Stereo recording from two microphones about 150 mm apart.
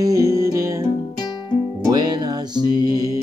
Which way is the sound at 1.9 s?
25° right (ahead or behind).